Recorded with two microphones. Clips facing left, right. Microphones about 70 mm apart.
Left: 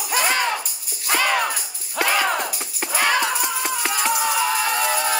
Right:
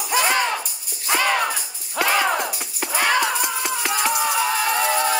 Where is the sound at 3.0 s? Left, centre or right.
Centre.